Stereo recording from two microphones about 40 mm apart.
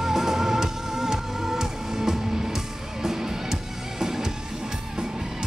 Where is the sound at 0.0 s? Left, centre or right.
Centre.